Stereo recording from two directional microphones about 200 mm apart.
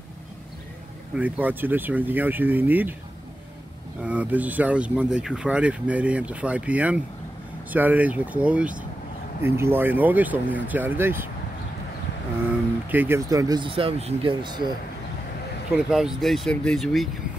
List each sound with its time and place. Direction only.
1.1 s speech: 10° right (ahead or behind)
4.0 s speech: 5° right (ahead or behind)
12.9 s speech: 10° right (ahead or behind)
15.9 s speech: centre (ahead or behind)